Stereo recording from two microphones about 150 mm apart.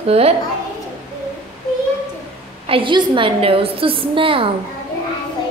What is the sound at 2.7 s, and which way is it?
A woman's voice, 35° right (ahead or behind).